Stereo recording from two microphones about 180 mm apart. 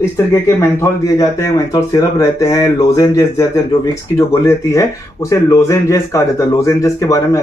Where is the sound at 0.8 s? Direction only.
20° left (ahead or behind).